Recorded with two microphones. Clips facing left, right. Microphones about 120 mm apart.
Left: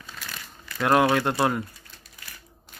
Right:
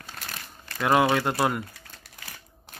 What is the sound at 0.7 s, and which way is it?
Speech, centre (ahead or behind).